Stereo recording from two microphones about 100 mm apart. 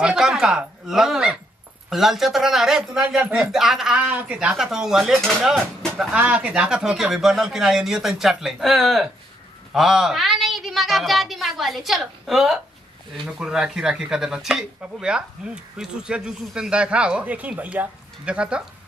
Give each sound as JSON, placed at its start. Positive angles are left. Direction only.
{"t": 0.0, "sound": "speech", "side_deg": -5}
{"t": 4.0, "sound": "speech", "side_deg": -15}
{"t": 6.1, "sound": "speech", "side_deg": -15}